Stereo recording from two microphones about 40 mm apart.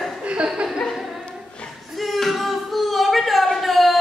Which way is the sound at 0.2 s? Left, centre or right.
Right.